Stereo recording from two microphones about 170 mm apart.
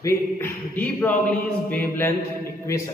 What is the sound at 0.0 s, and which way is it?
Speech, 10° left (ahead or behind).